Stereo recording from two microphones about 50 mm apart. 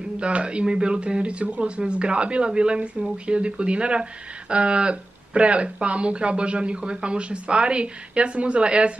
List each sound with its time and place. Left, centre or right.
0.2 s speech: right